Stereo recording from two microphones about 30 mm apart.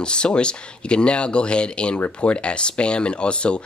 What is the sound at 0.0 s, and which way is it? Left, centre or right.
Speech, left.